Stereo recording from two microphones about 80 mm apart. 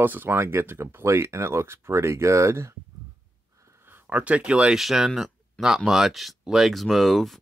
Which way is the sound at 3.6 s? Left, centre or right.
Right.